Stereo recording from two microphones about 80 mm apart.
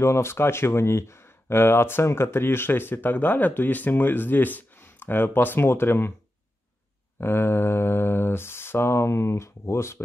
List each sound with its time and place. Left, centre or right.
0.0 s speech: left
7.2 s speech: left